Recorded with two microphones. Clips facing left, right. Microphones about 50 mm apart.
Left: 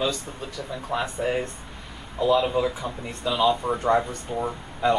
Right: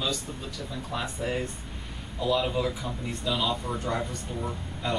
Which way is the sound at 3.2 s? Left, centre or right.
Centre.